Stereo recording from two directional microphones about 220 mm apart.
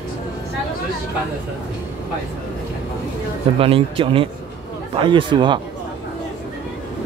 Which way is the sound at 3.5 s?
25° right (ahead or behind).